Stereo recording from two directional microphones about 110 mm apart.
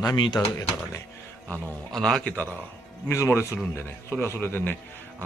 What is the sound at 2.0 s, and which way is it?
Speech, 5° left (ahead or behind).